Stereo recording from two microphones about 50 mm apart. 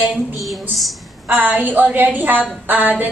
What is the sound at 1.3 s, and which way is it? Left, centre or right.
A woman's voice, right.